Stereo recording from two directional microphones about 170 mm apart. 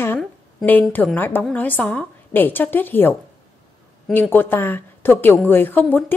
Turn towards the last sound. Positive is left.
turn(degrees=10)  # may be behind; listen again after turning